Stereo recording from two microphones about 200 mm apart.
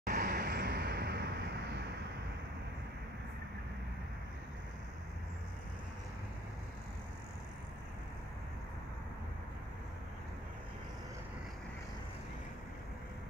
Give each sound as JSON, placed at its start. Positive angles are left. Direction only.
{"t": 0.0, "sound": "vehicle", "side_deg": -45}